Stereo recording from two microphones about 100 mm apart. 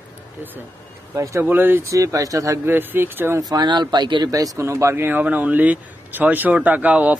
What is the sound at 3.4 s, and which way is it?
Speech, 45° right (ahead or behind).